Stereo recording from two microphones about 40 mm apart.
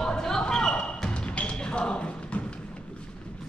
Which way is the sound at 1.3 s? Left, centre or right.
Left.